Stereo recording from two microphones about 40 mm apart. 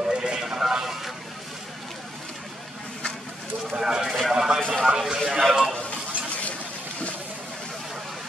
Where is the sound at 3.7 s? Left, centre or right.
Centre.